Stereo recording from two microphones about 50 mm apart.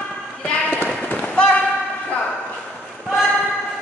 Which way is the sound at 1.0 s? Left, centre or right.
Left.